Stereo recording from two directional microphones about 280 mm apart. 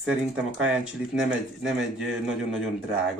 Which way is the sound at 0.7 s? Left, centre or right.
Centre.